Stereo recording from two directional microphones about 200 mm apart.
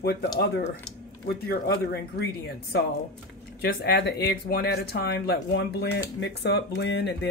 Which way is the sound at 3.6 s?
55° left (ahead or behind).